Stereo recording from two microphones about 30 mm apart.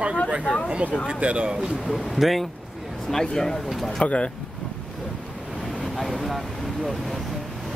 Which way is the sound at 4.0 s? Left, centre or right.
Left.